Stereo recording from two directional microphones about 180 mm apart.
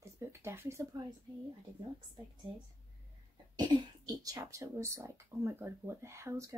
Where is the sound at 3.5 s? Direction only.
25° right (ahead or behind).